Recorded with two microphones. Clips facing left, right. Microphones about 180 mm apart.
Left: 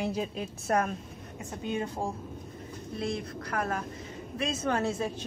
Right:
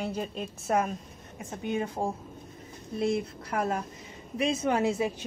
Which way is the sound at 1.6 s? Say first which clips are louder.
Right 2 dB; 15° right (ahead or behind).